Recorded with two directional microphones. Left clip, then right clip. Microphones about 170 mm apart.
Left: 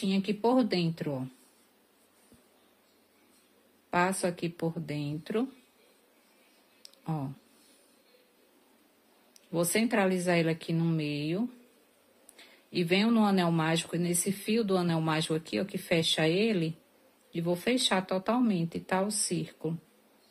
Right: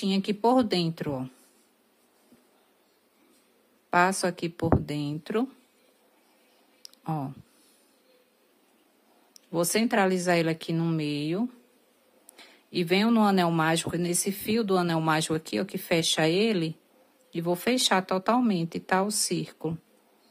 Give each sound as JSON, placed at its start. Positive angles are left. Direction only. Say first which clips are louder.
{"t": 0.0, "sound": "speech", "louder": "right 4 dB", "side_deg": -35}
{"t": 3.9, "sound": "speech", "louder": "right 5 dB", "side_deg": -35}
{"t": 6.8, "sound": "a sound", "louder": "right 5 dB", "side_deg": -35}
{"t": 9.3, "sound": "speech", "louder": "right 3 dB", "side_deg": -35}